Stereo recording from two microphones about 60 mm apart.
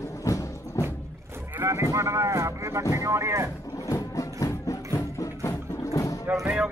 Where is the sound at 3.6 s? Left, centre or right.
Left.